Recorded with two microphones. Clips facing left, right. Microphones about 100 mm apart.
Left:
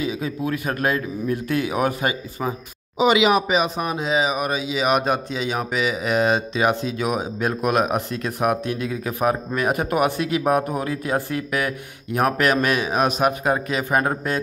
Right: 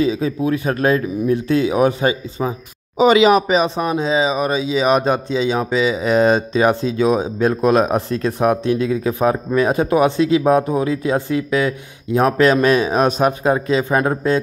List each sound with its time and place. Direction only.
0.0 s speech: 30° right (ahead or behind)
3.0 s speech: 35° right (ahead or behind)